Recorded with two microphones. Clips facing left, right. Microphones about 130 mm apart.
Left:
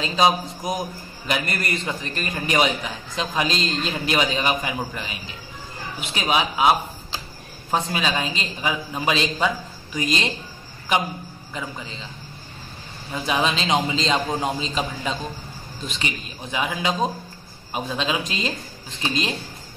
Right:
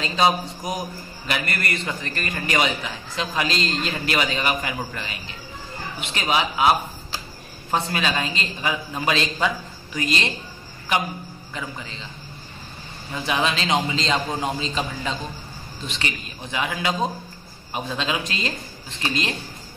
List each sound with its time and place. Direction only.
0.0 s a man's voice: 15° left (ahead or behind)
13.1 s a man's voice: 15° left (ahead or behind)